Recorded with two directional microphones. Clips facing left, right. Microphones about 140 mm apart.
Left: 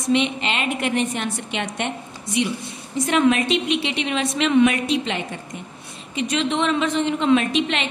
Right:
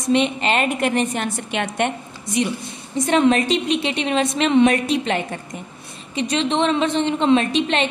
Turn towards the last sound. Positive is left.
turn(degrees=-35)  # may be behind; listen again after turning